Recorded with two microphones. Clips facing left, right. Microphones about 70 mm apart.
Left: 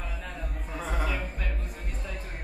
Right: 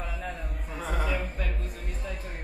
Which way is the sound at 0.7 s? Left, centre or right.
Centre.